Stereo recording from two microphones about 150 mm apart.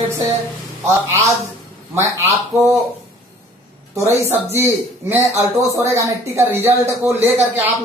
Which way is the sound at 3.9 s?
20° right (ahead or behind).